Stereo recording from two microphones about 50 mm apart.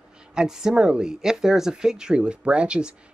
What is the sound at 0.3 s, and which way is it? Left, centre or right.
Speech, centre.